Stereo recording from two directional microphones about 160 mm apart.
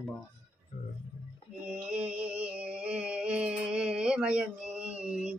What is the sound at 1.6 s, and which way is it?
Music, 10° right (ahead or behind).